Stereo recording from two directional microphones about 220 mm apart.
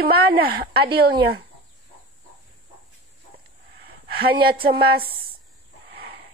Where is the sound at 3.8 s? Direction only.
45° right (ahead or behind).